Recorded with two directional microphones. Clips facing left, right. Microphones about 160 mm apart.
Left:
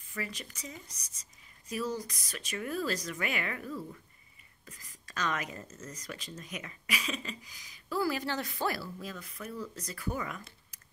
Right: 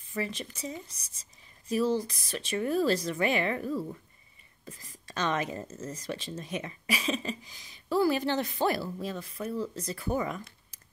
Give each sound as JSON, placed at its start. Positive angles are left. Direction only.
{"t": 0.1, "sound": "speech", "side_deg": -25}